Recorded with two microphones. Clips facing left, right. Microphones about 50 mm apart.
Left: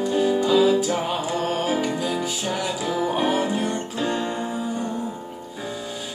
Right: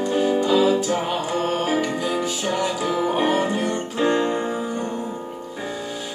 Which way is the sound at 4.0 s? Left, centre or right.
Right.